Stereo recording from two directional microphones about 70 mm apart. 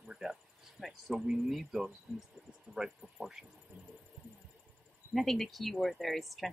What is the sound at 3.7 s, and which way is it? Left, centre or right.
Heart sounds, right.